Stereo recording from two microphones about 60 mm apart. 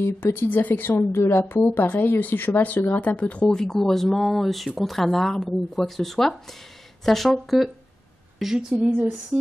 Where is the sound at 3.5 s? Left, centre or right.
Centre.